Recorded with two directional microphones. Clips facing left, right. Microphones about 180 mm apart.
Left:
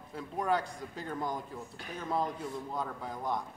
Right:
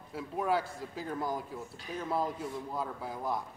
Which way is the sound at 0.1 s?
5° right (ahead or behind).